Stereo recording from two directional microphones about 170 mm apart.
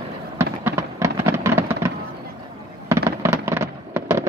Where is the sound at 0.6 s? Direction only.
15° right (ahead or behind).